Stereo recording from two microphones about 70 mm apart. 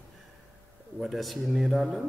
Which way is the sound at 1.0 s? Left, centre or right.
Centre.